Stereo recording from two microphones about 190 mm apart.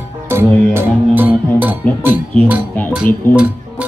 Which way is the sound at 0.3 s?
10° right (ahead or behind).